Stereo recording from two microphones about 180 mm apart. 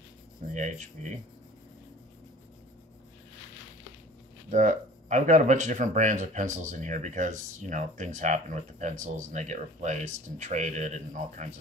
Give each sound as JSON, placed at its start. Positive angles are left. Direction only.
{"t": 0.6, "sound": "speech", "side_deg": -45}
{"t": 4.5, "sound": "speech", "side_deg": -45}